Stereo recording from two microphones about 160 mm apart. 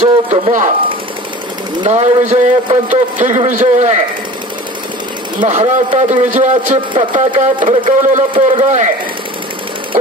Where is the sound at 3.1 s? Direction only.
50° right (ahead or behind).